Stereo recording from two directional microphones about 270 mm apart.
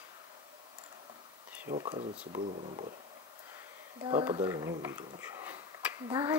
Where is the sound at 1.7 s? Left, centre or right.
Centre.